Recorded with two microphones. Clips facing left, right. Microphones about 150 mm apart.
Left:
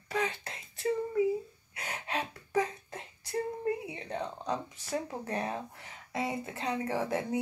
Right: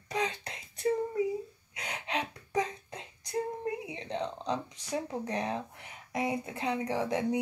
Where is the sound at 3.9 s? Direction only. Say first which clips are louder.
Right 2 dB; 10° left (ahead or behind).